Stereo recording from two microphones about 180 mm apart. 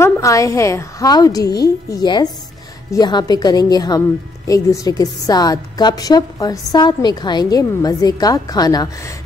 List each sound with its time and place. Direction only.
0.0 s a woman's voice: 15° left (ahead or behind)